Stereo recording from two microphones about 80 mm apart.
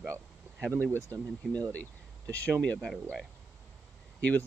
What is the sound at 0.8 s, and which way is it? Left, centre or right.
Speech, left.